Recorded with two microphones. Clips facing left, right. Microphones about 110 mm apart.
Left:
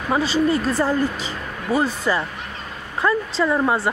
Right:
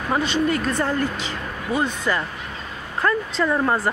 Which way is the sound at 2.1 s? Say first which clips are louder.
Left 1 dB; 15° left (ahead or behind).